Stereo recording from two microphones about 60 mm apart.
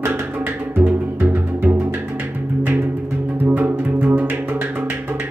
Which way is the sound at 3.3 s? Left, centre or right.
Right.